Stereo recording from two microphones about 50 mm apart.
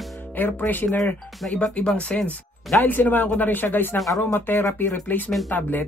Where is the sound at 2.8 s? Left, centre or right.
Left.